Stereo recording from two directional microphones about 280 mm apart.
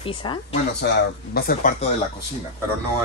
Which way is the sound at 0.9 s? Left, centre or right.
Left.